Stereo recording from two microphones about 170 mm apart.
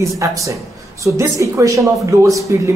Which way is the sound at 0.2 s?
20° right (ahead or behind).